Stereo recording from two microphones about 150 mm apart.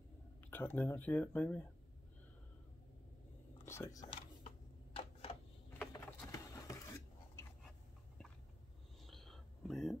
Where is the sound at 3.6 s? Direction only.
15° left (ahead or behind).